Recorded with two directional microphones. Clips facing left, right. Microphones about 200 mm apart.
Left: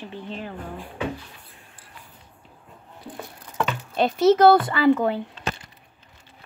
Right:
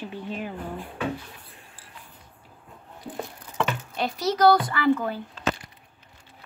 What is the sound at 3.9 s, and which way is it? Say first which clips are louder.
Speech: left 9 dB; 25° left (ahead or behind).